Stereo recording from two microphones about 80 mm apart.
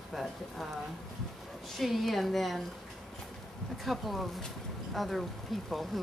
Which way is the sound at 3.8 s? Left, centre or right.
Centre.